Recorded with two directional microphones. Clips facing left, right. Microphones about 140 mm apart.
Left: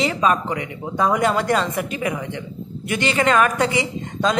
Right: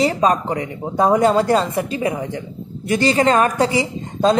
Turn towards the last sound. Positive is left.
turn(degrees=-35)  # may be behind; listen again after turning